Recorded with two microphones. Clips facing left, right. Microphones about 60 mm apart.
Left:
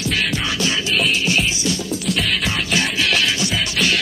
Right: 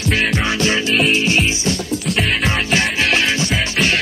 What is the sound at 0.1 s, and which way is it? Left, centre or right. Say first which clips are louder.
Music: right 6 dB; right.